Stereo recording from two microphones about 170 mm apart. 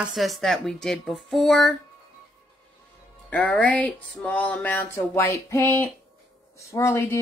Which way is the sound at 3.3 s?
10° left (ahead or behind).